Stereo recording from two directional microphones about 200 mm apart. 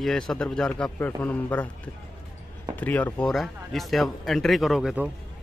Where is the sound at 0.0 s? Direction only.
Centre (ahead or behind).